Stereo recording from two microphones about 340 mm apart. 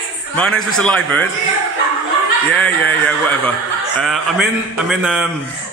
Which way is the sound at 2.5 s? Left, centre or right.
Centre.